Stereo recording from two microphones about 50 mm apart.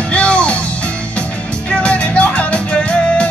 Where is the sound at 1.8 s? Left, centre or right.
Left.